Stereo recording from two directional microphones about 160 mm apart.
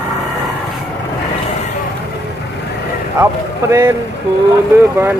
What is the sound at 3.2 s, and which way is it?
Speech, 15° right (ahead or behind).